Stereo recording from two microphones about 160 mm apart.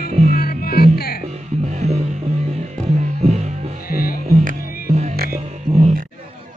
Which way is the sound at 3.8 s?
65° left (ahead or behind).